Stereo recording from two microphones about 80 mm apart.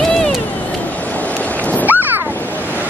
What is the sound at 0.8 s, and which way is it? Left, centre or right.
Dog, centre.